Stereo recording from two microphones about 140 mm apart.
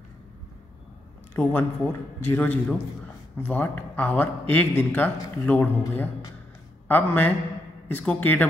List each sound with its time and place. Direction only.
1.3 s speech: 15° left (ahead or behind)